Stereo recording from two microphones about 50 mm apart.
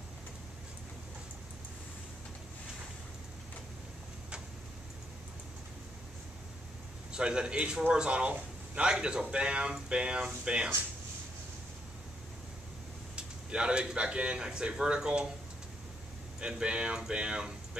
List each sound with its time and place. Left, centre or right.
7.1 s a man's voice: centre
13.1 s speech: centre
16.3 s a man's voice: right